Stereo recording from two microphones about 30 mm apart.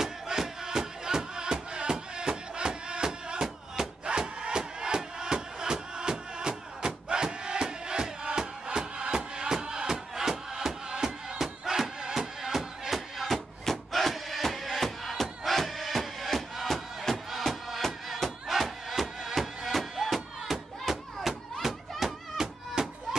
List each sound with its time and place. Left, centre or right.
0.0 s music: centre
3.4 s a sound: centre
4.0 s wood: right
9.1 s music: right
11.3 s battle cry: centre
12.0 s music: centre
13.7 s a sound: centre
16.6 s music: centre
18.5 s music: centre
20.8 s a sound: centre
22.0 s music: centre